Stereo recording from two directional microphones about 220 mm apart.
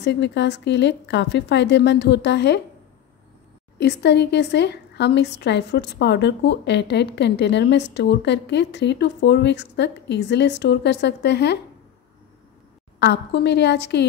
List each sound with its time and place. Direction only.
0.0 s speech: 50° left (ahead or behind)
3.7 s speech: 50° left (ahead or behind)
13.0 s speech: 50° left (ahead or behind)